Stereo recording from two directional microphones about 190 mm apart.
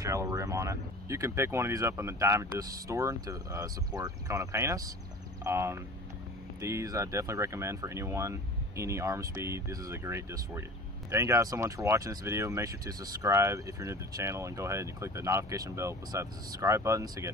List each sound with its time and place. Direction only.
0.0 s speech: 15° right (ahead or behind)